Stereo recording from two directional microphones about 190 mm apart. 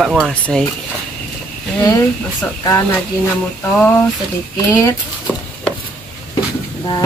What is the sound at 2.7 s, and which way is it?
Speech, 10° left (ahead or behind).